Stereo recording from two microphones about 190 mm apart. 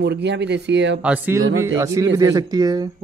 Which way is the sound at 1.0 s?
10° right (ahead or behind).